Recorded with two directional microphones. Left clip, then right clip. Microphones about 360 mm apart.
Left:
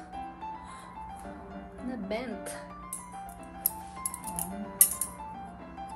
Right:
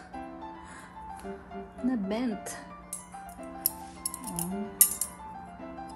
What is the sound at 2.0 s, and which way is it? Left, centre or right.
Music, centre.